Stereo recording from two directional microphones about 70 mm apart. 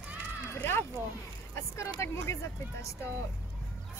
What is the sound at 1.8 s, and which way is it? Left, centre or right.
Vehicle, left.